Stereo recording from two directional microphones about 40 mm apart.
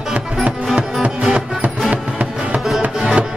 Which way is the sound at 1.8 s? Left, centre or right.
Right.